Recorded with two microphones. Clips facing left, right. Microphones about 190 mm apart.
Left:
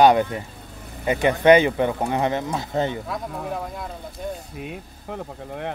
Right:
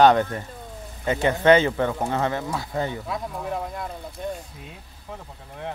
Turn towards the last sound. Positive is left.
turn(degrees=70)  # may be behind; listen again after turning